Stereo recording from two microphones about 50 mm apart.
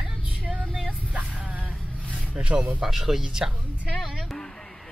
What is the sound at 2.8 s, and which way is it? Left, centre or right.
Speech, centre.